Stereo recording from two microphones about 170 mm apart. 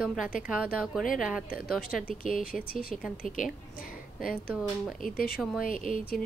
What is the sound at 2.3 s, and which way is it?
Speech, 55° left (ahead or behind).